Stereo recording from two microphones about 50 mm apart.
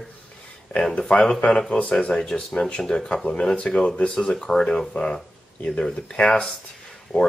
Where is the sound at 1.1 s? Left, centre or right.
Left.